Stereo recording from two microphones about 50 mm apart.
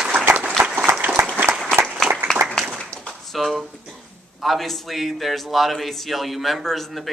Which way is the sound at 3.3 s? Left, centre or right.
Centre.